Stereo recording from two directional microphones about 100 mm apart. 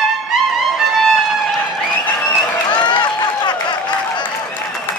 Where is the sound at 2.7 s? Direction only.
50° left (ahead or behind).